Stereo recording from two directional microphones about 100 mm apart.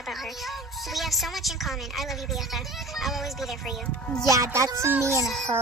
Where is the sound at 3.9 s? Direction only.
10° left (ahead or behind).